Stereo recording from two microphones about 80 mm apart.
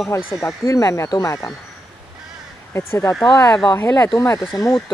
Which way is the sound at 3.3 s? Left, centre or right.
Left.